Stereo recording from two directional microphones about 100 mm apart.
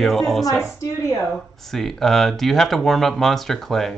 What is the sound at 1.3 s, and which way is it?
Speech, 5° left (ahead or behind).